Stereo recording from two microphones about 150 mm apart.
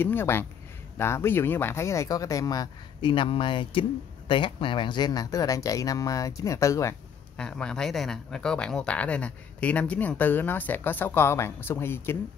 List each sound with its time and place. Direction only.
0.0 s speech: 15° left (ahead or behind)
7.3 s speech: 5° left (ahead or behind)